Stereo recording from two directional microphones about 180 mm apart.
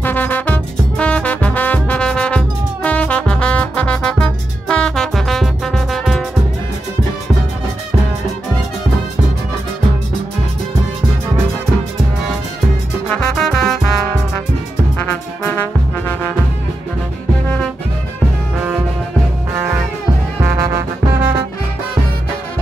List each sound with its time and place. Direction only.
0.0 s music: 10° left (ahead or behind)
13.1 s music: 5° left (ahead or behind)
15.4 s music: 10° left (ahead or behind)
20.4 s music: 15° right (ahead or behind)